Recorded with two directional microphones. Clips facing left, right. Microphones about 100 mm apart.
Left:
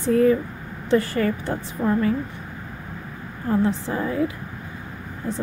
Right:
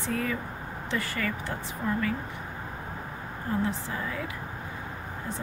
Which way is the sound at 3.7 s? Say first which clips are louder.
Left 8 dB; 30° left (ahead or behind).